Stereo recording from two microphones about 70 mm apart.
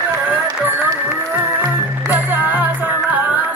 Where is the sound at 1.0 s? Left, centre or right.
Right.